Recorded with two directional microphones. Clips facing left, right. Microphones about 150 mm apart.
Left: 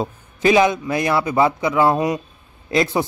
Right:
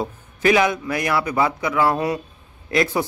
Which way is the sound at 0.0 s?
25° left (ahead or behind).